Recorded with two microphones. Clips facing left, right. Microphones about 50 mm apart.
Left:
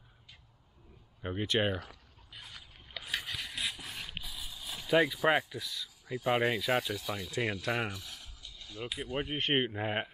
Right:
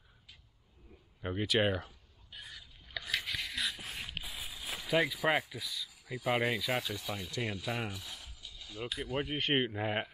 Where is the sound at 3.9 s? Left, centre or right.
Centre.